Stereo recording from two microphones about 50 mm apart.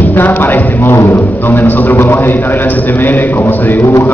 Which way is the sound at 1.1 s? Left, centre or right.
Left.